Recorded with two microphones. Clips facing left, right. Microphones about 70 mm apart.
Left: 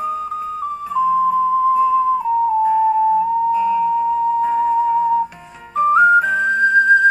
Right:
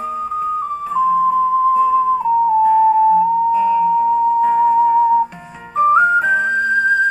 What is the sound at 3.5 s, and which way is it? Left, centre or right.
Music, centre.